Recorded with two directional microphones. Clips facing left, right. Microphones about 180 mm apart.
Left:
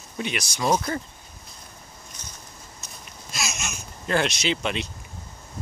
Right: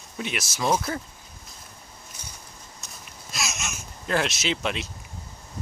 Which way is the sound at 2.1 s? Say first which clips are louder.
Even; 5° right (ahead or behind).